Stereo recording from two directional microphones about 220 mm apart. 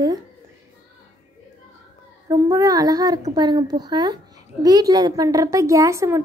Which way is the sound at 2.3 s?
15° right (ahead or behind).